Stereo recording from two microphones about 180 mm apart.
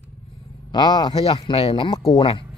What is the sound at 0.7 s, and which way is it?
Speech, 25° left (ahead or behind).